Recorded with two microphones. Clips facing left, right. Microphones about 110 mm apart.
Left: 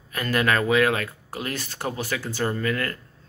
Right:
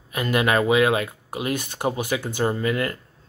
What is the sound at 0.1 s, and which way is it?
Speech, 15° right (ahead or behind).